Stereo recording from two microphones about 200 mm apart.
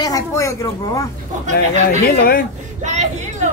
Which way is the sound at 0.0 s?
15° left (ahead or behind).